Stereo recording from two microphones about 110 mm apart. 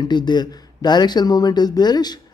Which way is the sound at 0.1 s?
40° left (ahead or behind).